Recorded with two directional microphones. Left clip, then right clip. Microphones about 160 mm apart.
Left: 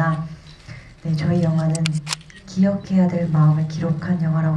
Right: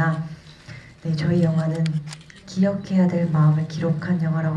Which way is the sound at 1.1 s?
25° right (ahead or behind).